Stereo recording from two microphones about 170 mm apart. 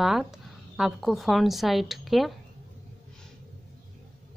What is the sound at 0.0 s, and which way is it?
Speech, centre (ahead or behind).